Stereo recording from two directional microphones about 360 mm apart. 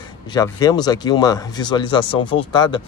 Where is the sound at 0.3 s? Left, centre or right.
Centre.